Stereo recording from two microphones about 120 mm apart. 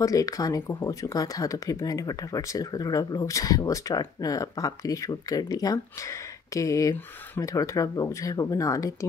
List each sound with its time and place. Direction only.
0.0 s speech: 30° left (ahead or behind)